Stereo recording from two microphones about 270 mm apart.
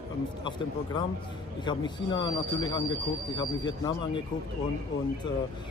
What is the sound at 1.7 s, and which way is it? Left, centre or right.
Speech, centre.